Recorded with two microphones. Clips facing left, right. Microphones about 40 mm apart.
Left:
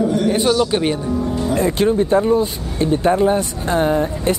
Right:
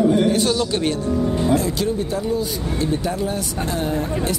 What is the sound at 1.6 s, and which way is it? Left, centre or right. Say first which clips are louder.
Speech: left 6 dB; left.